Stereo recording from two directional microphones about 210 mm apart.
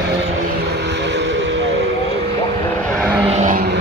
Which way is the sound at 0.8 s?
55° right (ahead or behind).